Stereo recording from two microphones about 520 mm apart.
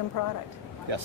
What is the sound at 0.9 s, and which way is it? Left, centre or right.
Speech, right.